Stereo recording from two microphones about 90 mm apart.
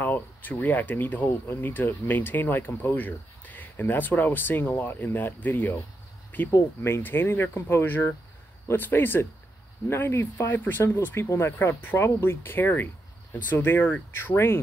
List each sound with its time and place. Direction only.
0.0 s speech: 20° left (ahead or behind)